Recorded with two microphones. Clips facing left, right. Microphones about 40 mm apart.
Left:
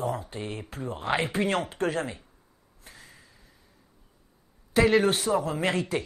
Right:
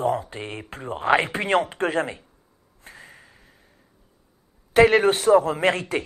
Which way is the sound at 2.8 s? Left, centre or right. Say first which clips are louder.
Right 6 dB; right.